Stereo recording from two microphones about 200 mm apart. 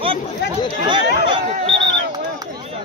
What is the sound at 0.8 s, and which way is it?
Chatter, 25° right (ahead or behind).